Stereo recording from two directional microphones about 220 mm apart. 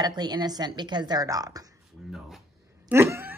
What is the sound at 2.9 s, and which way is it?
Cat, 10° right (ahead or behind).